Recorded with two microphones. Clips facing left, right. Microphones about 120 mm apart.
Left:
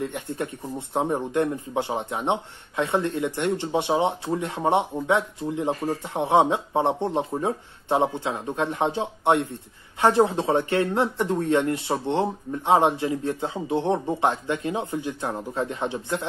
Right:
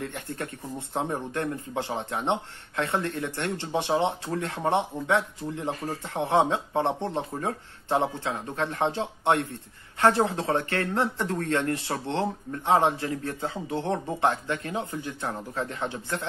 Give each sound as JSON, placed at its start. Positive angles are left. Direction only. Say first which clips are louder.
{"t": 0.0, "sound": "speech", "louder": "left 5 dB", "side_deg": 15}